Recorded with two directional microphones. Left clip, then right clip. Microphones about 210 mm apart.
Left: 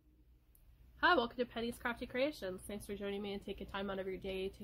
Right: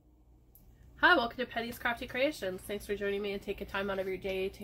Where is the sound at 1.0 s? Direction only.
45° left (ahead or behind).